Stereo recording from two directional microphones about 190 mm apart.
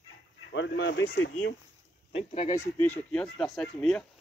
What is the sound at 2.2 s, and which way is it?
Speech, 30° left (ahead or behind).